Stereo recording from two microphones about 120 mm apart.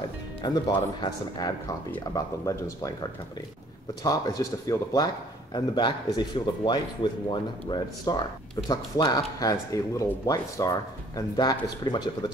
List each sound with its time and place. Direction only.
0.4 s speech: 40° left (ahead or behind)